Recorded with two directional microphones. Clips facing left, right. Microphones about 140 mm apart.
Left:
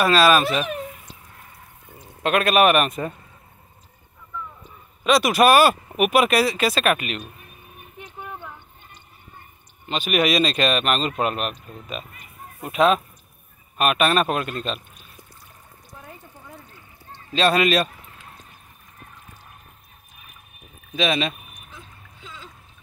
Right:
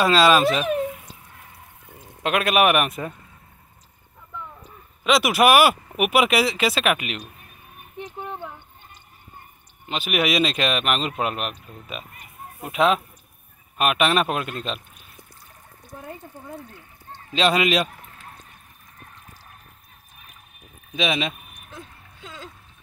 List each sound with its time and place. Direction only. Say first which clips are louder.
0.0 s speech: even; 20° right (ahead or behind)
2.2 s speech: left 2 dB; 15° right (ahead or behind)
5.1 s speech: left 1 dB; 10° right (ahead or behind)
9.8 s speech: left 2 dB; 10° right (ahead or behind)
17.3 s speech: left 1 dB; 15° right (ahead or behind)
20.9 s speech: left 2 dB; 10° right (ahead or behind)